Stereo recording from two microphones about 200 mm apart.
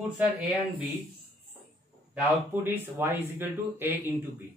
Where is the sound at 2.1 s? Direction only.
10° right (ahead or behind).